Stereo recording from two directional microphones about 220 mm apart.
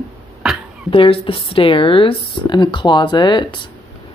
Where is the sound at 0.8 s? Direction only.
25° left (ahead or behind).